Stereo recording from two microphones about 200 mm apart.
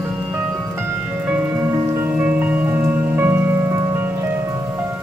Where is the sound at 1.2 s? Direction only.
10° right (ahead or behind).